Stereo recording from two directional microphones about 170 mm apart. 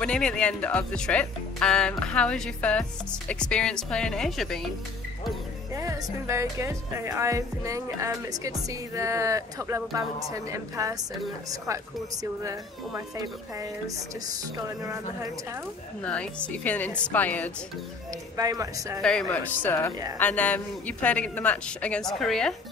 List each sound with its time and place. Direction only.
0.0 s speech: 5° left (ahead or behind)
5.8 s speech: 20° right (ahead or behind)
16.0 s a man's voice: 5° left (ahead or behind)
18.3 s speech: 20° right (ahead or behind)
18.9 s a man's voice: 5° left (ahead or behind)